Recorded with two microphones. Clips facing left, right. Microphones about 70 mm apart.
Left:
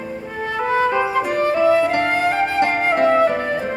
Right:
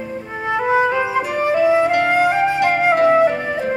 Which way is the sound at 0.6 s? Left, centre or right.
Centre.